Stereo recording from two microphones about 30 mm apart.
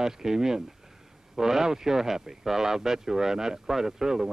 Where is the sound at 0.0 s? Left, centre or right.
Centre.